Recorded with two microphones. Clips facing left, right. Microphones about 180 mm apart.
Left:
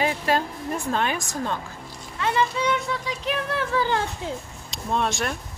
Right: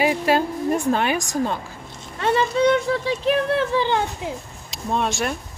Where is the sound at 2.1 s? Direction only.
35° right (ahead or behind).